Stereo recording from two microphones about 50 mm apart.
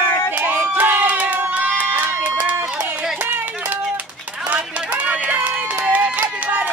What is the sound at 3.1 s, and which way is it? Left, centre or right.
Clapping, right.